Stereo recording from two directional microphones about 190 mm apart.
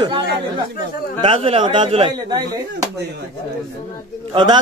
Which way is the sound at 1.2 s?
30° right (ahead or behind).